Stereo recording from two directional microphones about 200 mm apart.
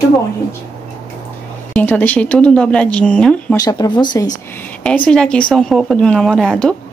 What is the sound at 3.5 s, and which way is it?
Speech, 20° left (ahead or behind).